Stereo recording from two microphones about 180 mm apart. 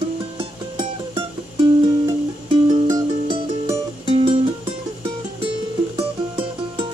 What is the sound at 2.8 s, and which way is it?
Music, 20° right (ahead or behind).